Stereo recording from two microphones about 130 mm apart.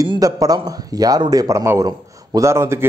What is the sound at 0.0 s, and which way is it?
Speech, 25° right (ahead or behind).